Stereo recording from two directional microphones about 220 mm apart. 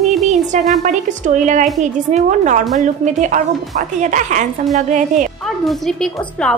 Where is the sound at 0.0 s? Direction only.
Centre (ahead or behind).